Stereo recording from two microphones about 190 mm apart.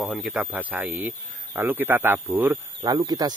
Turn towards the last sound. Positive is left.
turn(degrees=-20)  # may be behind; listen again after turning